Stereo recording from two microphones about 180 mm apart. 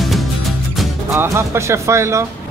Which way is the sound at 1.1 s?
15° right (ahead or behind).